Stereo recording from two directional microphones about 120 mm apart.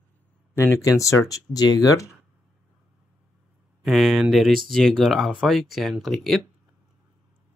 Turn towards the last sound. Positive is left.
turn(degrees=0)  # may be behind; listen again after turning